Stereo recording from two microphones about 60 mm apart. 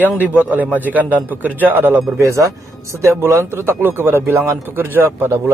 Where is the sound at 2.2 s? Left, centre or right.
Right.